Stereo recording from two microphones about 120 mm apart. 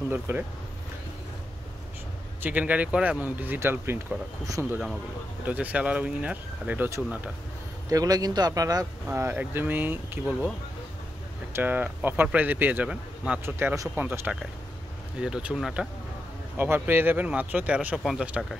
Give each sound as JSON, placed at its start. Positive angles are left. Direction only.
{"t": 0.1, "sound": "speech", "side_deg": -20}
{"t": 2.4, "sound": "speech", "side_deg": -15}
{"t": 7.9, "sound": "speech", "side_deg": -30}
{"t": 9.0, "sound": "speech", "side_deg": -20}
{"t": 11.5, "sound": "speech", "side_deg": -15}